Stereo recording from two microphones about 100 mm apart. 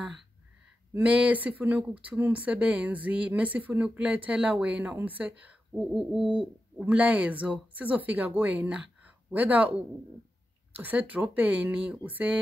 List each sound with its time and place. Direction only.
0.9 s speech: 15° right (ahead or behind)
6.8 s speech: 15° right (ahead or behind)
10.8 s speech: 15° right (ahead or behind)